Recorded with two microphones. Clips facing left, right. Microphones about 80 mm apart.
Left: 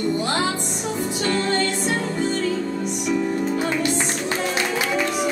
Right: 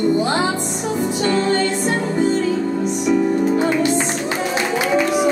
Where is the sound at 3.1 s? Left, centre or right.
Centre.